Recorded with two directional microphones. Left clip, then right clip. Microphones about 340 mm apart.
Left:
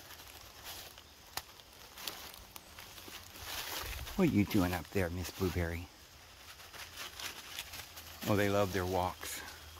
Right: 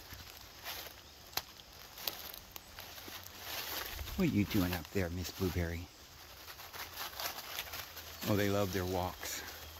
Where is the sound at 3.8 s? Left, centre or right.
Centre.